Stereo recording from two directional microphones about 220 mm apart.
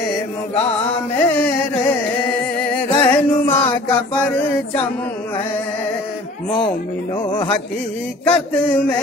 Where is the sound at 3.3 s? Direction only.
10° left (ahead or behind).